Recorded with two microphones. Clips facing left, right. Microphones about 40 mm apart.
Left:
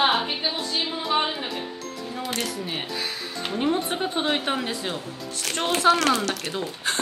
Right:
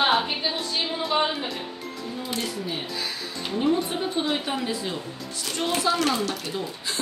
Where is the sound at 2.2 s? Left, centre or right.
Left.